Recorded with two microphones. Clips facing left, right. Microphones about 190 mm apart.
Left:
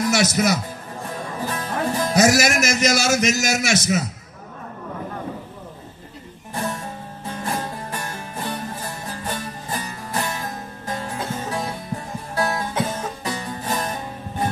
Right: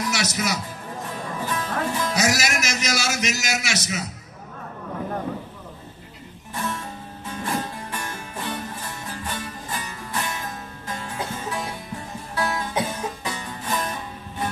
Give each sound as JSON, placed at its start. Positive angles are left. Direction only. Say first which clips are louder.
{"t": 0.1, "sound": "speech", "louder": "left 7 dB", "side_deg": 50}
{"t": 1.5, "sound": "speech", "louder": "left 2 dB", "side_deg": 40}
{"t": 6.5, "sound": "music", "louder": "left 2 dB", "side_deg": 40}